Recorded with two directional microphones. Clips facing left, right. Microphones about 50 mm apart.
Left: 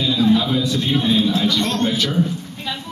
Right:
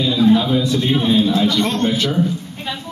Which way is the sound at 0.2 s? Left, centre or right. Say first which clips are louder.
Right 3 dB; centre.